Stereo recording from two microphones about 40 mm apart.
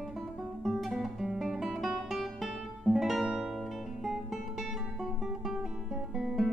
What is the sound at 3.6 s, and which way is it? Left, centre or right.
Music, centre.